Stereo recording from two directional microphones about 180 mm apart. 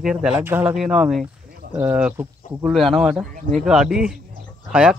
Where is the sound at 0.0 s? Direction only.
5° right (ahead or behind).